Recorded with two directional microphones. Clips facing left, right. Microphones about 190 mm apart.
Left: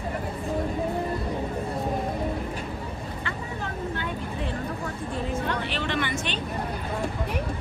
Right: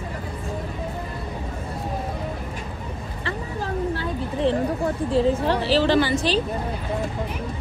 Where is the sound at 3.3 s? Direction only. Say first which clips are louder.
Right 8 dB; 35° right (ahead or behind).